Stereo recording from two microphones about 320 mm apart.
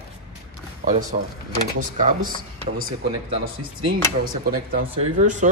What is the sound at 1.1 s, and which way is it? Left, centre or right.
Speech, right.